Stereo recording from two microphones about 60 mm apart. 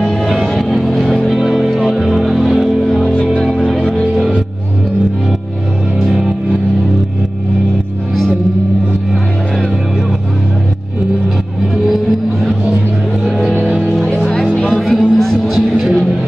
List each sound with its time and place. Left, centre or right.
0.1 s music: centre
11.7 s music: centre
13.7 s music: centre